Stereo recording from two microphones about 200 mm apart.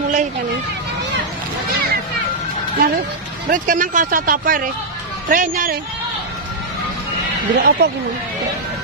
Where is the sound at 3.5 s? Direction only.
40° right (ahead or behind).